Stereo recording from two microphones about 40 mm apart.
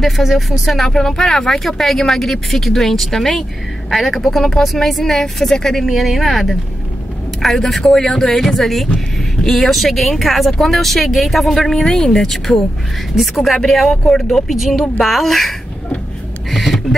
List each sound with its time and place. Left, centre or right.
0.0 s speech: centre
5.9 s speech: centre